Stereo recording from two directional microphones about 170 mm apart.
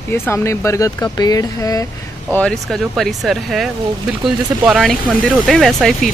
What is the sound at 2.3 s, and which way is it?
Speech, 5° left (ahead or behind).